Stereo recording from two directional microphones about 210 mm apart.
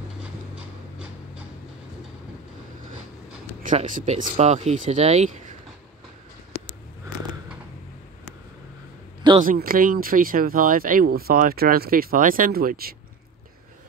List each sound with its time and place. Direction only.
3.6 s speech: 40° right (ahead or behind)
9.4 s speech: 40° right (ahead or behind)